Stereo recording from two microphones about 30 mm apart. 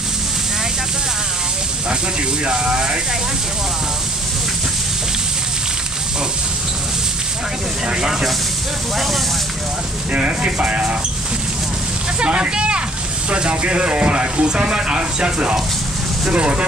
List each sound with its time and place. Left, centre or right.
2.4 s speech: right
8.0 s speech: centre
8.9 s speech: centre
10.1 s speech: right
12.2 s speech: right